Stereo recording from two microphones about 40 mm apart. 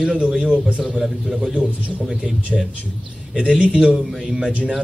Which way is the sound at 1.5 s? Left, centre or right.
Right.